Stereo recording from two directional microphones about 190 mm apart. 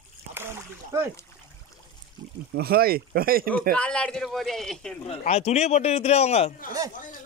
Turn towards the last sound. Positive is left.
turn(degrees=35)  # may be behind; listen again after turning